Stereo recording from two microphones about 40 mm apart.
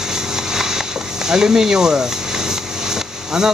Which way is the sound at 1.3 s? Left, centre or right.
Centre.